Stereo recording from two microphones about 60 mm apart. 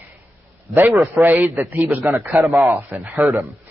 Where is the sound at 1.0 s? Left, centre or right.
Right.